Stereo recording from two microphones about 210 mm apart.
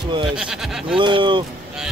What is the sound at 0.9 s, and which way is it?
Speech, 25° right (ahead or behind).